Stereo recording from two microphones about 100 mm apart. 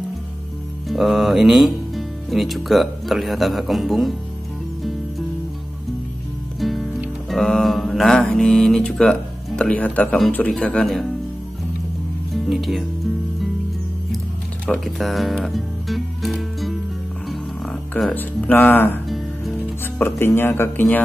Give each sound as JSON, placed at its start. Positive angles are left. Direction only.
{"t": 0.8, "sound": "speech", "side_deg": 0}
{"t": 6.6, "sound": "music", "side_deg": 0}
{"t": 7.2, "sound": "mantra", "side_deg": 0}
{"t": 10.3, "sound": "a man's voice", "side_deg": 10}
{"t": 12.4, "sound": "speech", "side_deg": 0}
{"t": 14.7, "sound": "music", "side_deg": 0}
{"t": 18.1, "sound": "speech", "side_deg": 20}
{"t": 19.0, "sound": "music", "side_deg": 0}
{"t": 20.0, "sound": "speech", "side_deg": 20}